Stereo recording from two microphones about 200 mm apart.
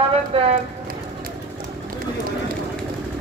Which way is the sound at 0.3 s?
30° right (ahead or behind).